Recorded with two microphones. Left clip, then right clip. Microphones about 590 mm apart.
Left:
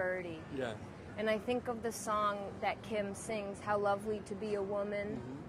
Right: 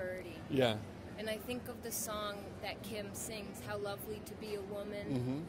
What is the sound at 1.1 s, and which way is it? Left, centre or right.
Speech, left.